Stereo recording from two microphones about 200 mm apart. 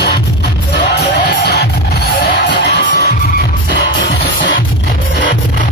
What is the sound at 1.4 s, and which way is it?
Music, 55° left (ahead or behind).